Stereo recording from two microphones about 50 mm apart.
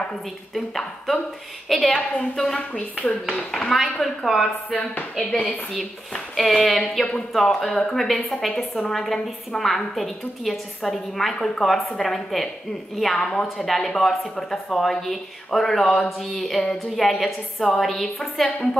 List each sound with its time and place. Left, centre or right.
0.6 s a woman's voice: centre
2.7 s speech: left
3.3 s a woman's voice: centre